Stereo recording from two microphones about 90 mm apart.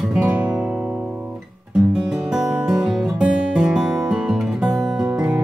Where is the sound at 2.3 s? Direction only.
5° right (ahead or behind).